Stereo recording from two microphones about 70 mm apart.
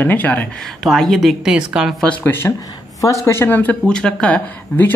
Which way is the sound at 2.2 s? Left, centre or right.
Left.